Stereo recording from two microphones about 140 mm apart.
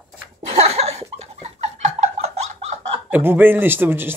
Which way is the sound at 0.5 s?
50° right (ahead or behind).